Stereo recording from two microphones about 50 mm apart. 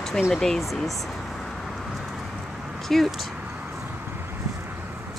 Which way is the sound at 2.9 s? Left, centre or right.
Centre.